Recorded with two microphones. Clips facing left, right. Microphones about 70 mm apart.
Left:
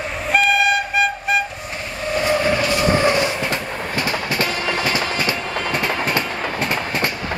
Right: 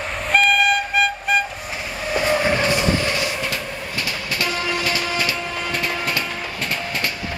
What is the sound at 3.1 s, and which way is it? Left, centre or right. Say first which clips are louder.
Train: left 4 dB; left.